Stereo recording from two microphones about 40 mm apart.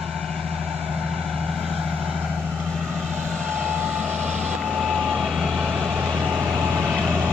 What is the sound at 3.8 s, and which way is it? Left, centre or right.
Vehicle, right.